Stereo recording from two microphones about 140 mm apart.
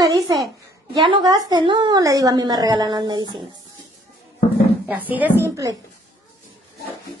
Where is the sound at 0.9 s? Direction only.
35° right (ahead or behind).